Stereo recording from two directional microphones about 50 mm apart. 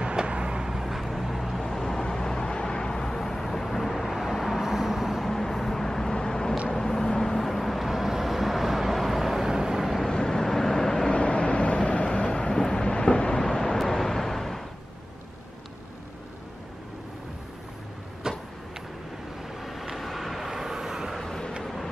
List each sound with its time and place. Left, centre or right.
0.0 s vehicle: centre
1.6 s vehicle: centre
5.3 s vehicle: centre
10.0 s vehicle: centre
11.1 s vehicle: left; by 14.6 s centre
18.3 s vehicle: centre
19.6 s vehicle: centre
21.2 s vehicle: centre